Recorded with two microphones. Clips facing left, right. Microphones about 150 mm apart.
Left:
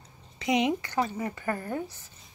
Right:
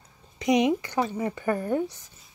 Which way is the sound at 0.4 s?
20° right (ahead or behind).